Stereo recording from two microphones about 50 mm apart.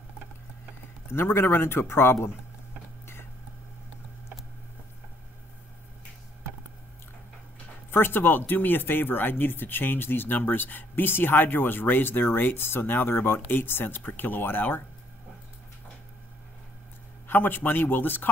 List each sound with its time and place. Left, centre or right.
1.1 s speech: left
7.9 s speech: left
17.3 s a man's voice: left